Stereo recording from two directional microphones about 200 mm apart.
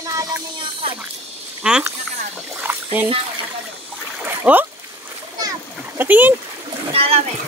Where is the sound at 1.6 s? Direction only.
5° right (ahead or behind).